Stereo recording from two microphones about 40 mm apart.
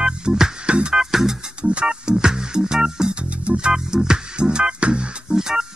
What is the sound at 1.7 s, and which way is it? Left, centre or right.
Music, right.